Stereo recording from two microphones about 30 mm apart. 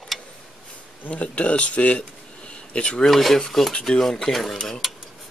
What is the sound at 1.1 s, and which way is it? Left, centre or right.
Speech, left.